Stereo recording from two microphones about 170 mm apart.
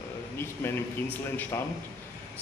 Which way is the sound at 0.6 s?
15° left (ahead or behind).